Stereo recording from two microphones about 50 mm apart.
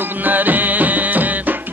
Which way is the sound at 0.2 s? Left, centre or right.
Right.